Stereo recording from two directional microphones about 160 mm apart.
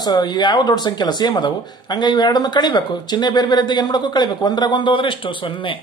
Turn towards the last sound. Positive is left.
turn(degrees=30)  # may be behind; listen again after turning